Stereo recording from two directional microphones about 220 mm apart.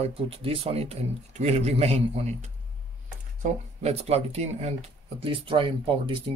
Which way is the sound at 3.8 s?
30° right (ahead or behind).